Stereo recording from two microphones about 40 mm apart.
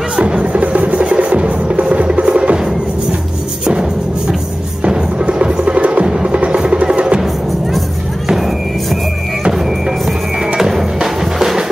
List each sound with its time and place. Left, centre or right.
0.2 s music: right
5.5 s music: right
8.4 s music: centre